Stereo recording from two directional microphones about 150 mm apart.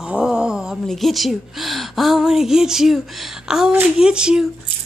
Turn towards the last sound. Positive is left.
turn(degrees=-5)  # may be behind; listen again after turning